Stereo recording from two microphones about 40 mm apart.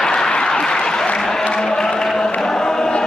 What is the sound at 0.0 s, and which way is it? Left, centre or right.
Applause, centre.